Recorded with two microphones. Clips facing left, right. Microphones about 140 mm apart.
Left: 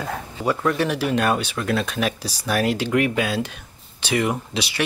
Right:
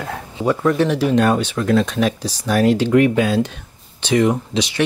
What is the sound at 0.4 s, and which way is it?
Speech, 30° right (ahead or behind).